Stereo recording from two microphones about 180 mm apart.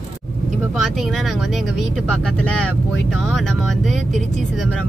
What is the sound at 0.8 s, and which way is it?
Speech, centre (ahead or behind).